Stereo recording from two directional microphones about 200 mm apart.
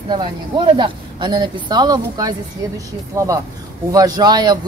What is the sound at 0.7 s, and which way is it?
Speech, 25° right (ahead or behind).